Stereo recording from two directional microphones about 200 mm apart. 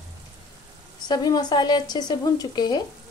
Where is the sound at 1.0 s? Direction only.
20° left (ahead or behind).